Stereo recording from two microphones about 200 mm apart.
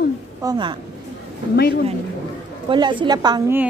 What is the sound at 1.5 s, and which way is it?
Speech, 55° left (ahead or behind).